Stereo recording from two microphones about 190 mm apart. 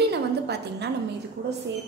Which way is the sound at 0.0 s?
60° right (ahead or behind).